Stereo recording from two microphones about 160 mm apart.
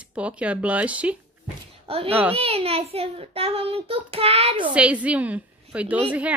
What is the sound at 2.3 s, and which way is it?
A child's voice, 35° right (ahead or behind).